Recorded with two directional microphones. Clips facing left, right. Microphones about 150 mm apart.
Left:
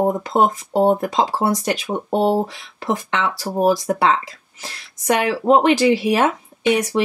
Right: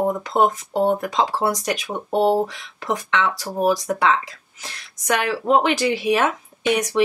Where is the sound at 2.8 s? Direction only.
30° left (ahead or behind).